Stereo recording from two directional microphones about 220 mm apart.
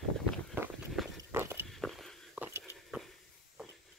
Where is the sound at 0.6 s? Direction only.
10° right (ahead or behind).